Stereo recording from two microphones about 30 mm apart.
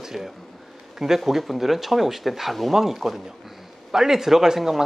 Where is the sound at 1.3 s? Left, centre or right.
Centre.